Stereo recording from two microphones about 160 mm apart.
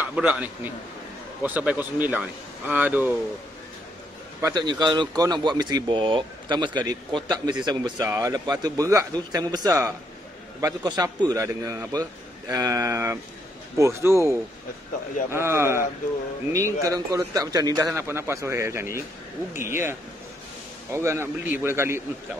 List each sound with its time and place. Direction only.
0.0 s a man's voice: 10° right (ahead or behind)
4.4 s a man's voice: 25° right (ahead or behind)
15.3 s speech: 15° right (ahead or behind)
16.8 s a man's voice: 20° right (ahead or behind)